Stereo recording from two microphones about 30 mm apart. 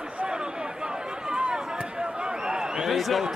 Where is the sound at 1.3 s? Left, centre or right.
Right.